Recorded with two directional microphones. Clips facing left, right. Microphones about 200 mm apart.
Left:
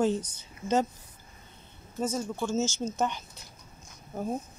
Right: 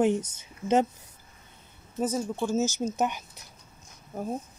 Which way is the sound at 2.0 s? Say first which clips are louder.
Right 2 dB; 15° right (ahead or behind).